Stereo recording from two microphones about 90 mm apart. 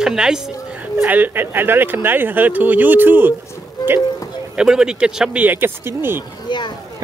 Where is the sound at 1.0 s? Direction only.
20° right (ahead or behind).